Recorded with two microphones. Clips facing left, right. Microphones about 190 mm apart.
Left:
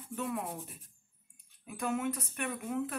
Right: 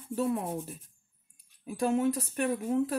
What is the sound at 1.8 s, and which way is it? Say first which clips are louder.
Speech: right 7 dB; 35° right (ahead or behind).